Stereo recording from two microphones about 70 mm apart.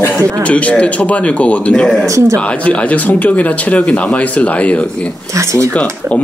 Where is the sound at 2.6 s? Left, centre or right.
Left.